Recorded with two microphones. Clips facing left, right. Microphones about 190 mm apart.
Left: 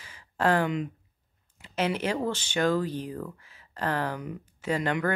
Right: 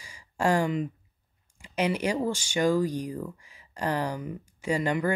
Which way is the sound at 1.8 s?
10° right (ahead or behind).